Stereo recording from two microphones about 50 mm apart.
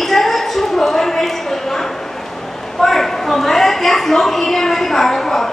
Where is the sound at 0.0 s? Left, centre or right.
Centre.